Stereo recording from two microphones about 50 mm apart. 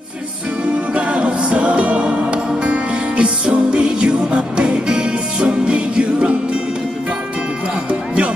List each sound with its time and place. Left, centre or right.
0.9 s music: right
7.9 s music: right